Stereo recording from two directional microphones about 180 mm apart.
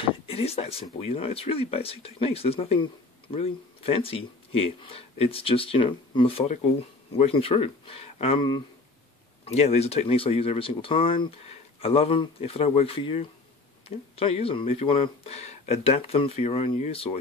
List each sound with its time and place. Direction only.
0.3 s speech: 35° left (ahead or behind)